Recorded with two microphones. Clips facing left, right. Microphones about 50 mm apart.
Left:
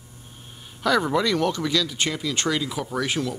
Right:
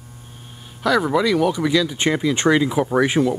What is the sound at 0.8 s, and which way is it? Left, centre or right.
Speech, centre.